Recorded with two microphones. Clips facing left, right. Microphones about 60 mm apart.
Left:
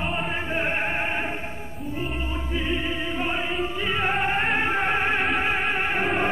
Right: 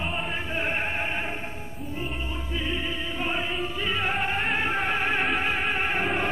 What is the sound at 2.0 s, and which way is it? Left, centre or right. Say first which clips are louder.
Music: left 3 dB; centre.